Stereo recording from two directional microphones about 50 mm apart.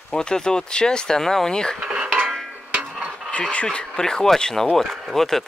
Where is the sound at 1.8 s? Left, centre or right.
Centre.